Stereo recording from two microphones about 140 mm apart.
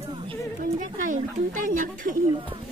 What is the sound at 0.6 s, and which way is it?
Speech, 70° right (ahead or behind).